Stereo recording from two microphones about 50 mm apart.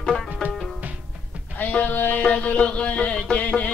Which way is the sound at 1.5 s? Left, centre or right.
Left.